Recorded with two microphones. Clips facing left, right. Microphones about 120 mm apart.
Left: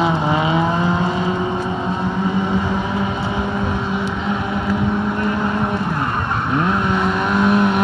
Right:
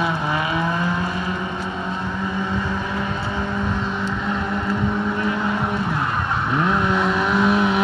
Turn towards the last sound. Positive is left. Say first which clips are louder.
# left 2 dB
turn(degrees=0)  # may be behind; listen again after turning